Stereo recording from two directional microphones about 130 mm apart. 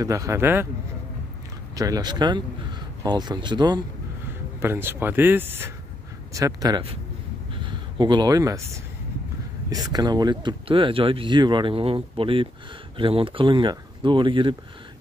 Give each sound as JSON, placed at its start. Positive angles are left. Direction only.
{"t": 0.0, "sound": "speech", "side_deg": -25}
{"t": 1.8, "sound": "speech", "side_deg": -30}
{"t": 4.6, "sound": "speech", "side_deg": -15}
{"t": 6.3, "sound": "speech", "side_deg": -25}
{"t": 7.5, "sound": "speech", "side_deg": -40}